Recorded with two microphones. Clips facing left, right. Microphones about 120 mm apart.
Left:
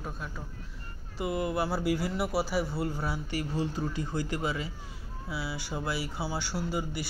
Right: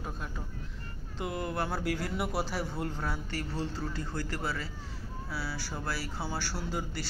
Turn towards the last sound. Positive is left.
turn(degrees=10)  # may be behind; listen again after turning